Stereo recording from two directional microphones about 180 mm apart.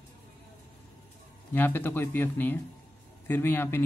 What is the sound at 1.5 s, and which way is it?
Speech, 10° left (ahead or behind).